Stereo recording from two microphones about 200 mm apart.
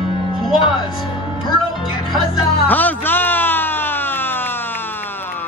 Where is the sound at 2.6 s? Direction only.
10° left (ahead or behind).